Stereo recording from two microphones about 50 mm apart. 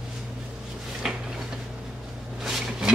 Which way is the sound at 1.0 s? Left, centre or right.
Centre.